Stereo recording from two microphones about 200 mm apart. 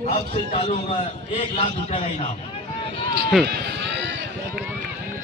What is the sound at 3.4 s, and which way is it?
Run, 60° right (ahead or behind).